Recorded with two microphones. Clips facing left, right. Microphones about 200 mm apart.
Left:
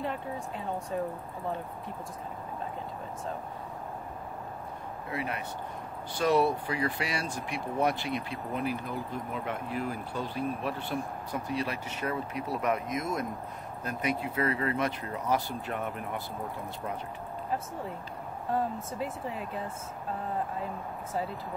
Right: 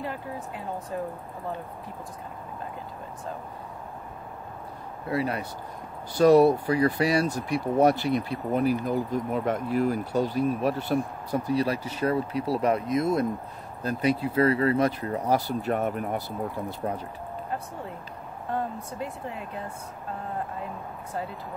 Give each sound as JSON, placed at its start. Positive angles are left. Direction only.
{"t": 5.1, "sound": "speech", "side_deg": -35}
{"t": 18.5, "sound": "speech", "side_deg": 0}